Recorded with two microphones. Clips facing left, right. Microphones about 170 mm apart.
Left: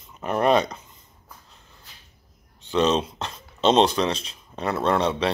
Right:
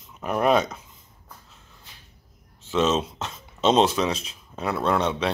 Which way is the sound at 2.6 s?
Centre (ahead or behind).